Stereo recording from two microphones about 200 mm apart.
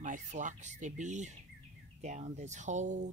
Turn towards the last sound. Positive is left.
turn(degrees=-35)  # may be behind; listen again after turning